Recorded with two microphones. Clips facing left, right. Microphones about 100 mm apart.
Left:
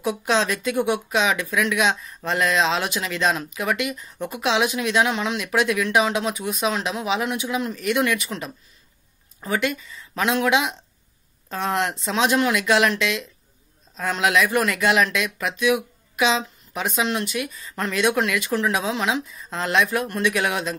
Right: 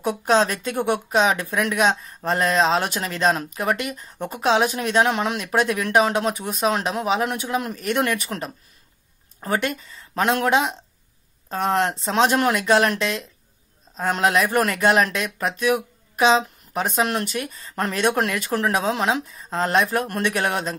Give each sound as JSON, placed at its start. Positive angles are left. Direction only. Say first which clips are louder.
{"t": 0.0, "sound": "speech", "louder": "right 3 dB", "side_deg": -40}